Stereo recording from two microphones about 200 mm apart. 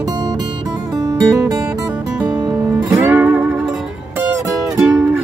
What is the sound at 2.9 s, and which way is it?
Music, 10° right (ahead or behind).